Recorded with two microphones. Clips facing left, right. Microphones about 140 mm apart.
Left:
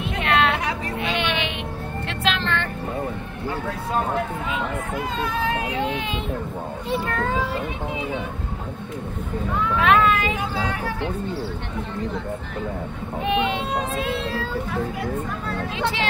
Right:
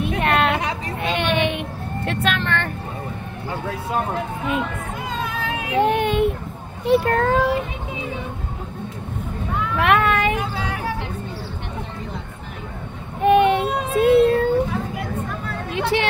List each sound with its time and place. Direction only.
0.0 s chatter: 50° right (ahead or behind)
1.0 s a sound: 50° right (ahead or behind)
2.0 s vehicle: 55° right (ahead or behind)
5.8 s a sound: 55° right (ahead or behind)
6.9 s a child's voice: 65° right (ahead or behind)
9.8 s vehicle: 60° right (ahead or behind)
13.2 s child singing: 50° right (ahead or behind)
15.7 s vehicle: 60° right (ahead or behind)